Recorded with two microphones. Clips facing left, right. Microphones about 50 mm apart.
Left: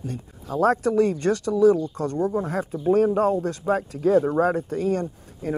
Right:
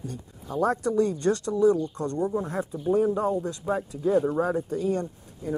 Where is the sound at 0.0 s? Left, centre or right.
Left.